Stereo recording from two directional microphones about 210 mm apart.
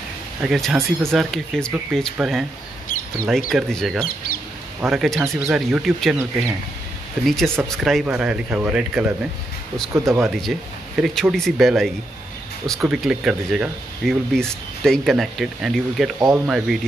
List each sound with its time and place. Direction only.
0.4 s speech: centre (ahead or behind)
2.9 s a sound: 40° left (ahead or behind)
3.3 s speech: centre (ahead or behind)
7.2 s speech: centre (ahead or behind)
11.0 s speech: centre (ahead or behind)